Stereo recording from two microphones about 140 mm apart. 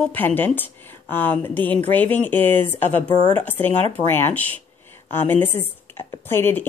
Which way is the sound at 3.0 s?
30° left (ahead or behind).